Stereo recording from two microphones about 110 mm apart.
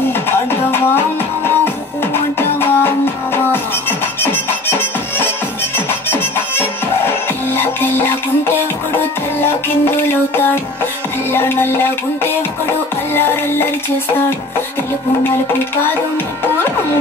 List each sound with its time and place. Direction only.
0.3 s music: 20° left (ahead or behind)
4.2 s music: 20° left (ahead or behind)